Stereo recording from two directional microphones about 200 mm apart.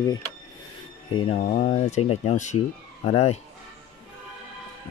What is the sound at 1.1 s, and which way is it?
Speech, 30° left (ahead or behind).